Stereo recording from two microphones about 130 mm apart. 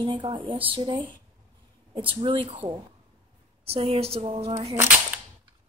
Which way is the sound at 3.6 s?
50° right (ahead or behind).